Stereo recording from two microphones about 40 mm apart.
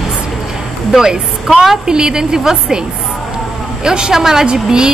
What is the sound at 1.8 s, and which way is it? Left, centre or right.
Speech, centre.